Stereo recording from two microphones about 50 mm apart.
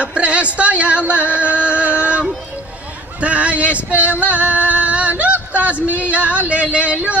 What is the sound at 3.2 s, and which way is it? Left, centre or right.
Music, right.